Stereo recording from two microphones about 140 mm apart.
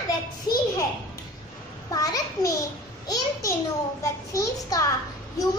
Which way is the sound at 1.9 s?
25° left (ahead or behind).